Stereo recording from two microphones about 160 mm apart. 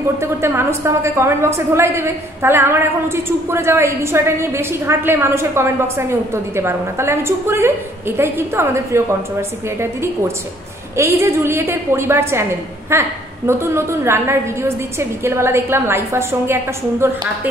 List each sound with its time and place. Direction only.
0.2 s a woman's voice: 15° right (ahead or behind)